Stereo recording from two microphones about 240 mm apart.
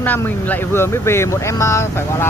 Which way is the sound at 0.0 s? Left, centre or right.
Centre.